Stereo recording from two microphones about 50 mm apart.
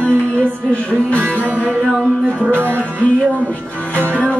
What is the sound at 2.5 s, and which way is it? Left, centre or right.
Music, right.